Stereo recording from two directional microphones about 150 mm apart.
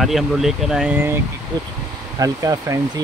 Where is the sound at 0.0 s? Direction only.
Centre (ahead or behind).